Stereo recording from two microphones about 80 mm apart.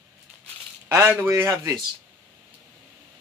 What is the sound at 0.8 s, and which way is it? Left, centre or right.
Speech, right.